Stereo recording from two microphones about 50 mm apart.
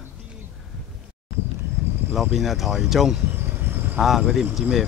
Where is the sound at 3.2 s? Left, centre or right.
Right.